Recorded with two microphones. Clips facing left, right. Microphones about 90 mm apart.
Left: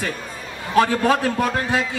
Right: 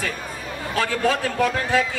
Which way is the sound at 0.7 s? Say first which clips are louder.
Left 7 dB; 30° left (ahead or behind).